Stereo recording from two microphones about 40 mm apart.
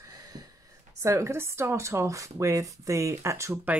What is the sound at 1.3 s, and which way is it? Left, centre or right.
Speech, right.